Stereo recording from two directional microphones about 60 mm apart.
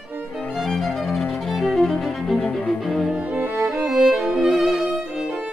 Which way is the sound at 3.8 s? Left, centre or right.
Centre.